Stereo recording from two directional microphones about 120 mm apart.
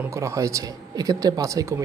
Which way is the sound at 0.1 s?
25° right (ahead or behind).